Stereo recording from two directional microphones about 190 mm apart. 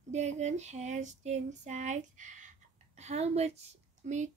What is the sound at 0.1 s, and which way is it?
Female singing, 35° right (ahead or behind).